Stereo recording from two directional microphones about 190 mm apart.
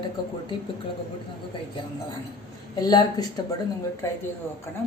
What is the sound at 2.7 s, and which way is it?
Speech, 20° left (ahead or behind).